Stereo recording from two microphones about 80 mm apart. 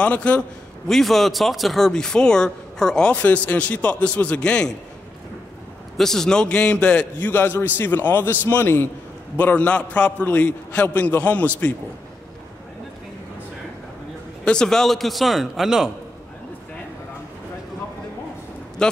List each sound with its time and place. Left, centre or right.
0.0 s speech: centre
0.8 s speech: centre
5.9 s a man's voice: centre
14.4 s a man's voice: centre
18.8 s speech: centre